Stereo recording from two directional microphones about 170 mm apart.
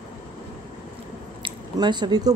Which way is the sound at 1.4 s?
25° right (ahead or behind).